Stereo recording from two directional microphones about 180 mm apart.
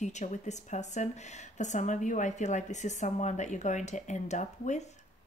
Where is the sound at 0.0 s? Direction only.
40° left (ahead or behind).